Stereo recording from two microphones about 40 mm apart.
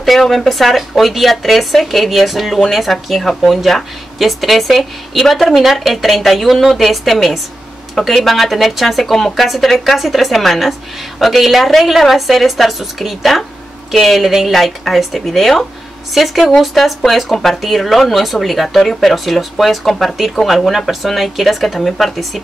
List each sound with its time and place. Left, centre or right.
0.0 s speech: centre